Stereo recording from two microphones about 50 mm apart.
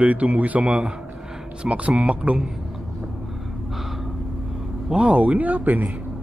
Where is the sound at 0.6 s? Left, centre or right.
Centre.